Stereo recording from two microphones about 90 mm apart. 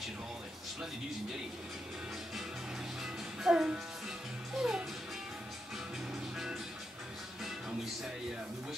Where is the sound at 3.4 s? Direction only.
10° right (ahead or behind).